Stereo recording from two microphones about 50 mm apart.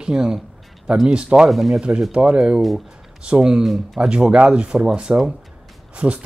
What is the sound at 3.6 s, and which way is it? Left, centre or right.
Speech, centre.